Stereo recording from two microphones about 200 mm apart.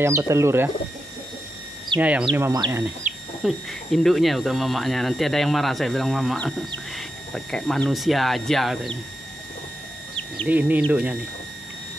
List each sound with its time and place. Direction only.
0.0 s speech: 15° right (ahead or behind)
2.0 s speech: 5° right (ahead or behind)
3.1 s bird: 40° right (ahead or behind)
3.4 s speech: centre (ahead or behind)
10.5 s speech: 10° right (ahead or behind)